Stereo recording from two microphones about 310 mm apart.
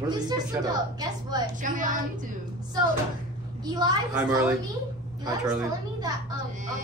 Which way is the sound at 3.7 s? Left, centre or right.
Centre.